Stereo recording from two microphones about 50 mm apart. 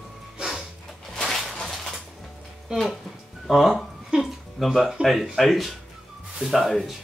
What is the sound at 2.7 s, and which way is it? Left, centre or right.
Speech, centre.